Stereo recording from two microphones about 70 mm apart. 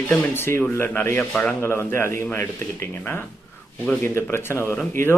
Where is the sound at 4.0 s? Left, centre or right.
Left.